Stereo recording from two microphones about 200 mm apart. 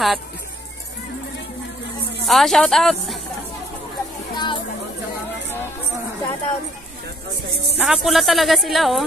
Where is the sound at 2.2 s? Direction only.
Centre (ahead or behind).